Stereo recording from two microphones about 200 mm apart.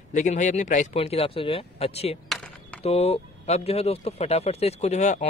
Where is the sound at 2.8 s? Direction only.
30° left (ahead or behind).